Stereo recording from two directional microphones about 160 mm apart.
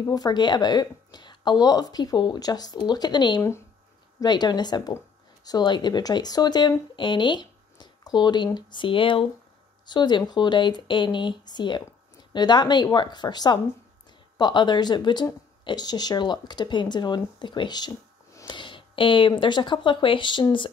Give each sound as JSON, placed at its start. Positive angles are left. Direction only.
{"t": 0.0, "sound": "speech", "side_deg": 25}